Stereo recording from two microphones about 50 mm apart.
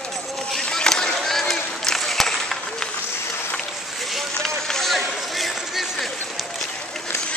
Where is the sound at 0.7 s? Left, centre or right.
Centre.